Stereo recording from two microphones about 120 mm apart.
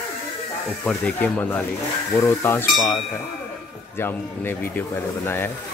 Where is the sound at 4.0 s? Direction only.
20° left (ahead or behind).